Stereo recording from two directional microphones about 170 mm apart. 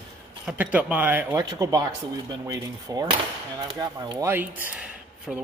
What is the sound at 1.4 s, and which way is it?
Speech, 20° right (ahead or behind).